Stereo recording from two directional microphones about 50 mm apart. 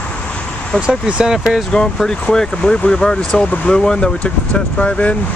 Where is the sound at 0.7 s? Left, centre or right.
Left.